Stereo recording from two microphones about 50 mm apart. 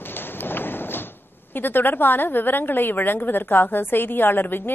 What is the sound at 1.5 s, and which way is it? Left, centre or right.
Mantra, left.